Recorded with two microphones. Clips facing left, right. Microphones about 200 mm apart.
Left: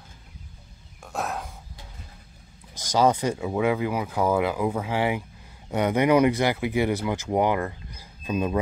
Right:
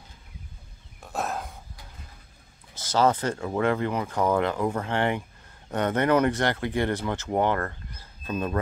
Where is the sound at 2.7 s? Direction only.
15° left (ahead or behind).